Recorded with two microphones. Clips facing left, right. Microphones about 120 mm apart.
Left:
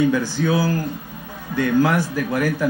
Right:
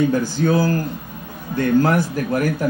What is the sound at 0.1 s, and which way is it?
Speech, 45° right (ahead or behind).